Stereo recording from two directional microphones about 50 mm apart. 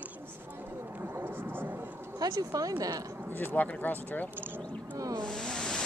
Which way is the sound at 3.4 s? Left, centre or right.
Left.